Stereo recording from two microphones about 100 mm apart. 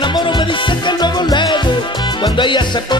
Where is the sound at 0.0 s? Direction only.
50° left (ahead or behind).